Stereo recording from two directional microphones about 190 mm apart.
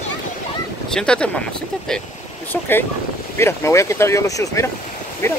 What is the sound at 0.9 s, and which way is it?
Speech, 5° left (ahead or behind).